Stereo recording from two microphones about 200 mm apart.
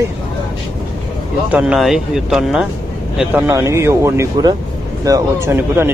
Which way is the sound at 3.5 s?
15° right (ahead or behind).